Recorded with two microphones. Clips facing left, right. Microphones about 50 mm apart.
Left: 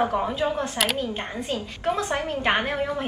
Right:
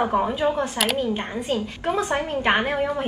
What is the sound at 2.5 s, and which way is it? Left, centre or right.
Speech, centre.